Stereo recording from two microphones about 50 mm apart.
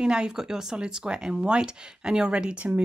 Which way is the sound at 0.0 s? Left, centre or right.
Centre.